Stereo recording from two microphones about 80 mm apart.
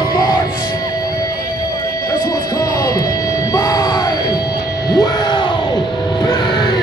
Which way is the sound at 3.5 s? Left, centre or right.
Left.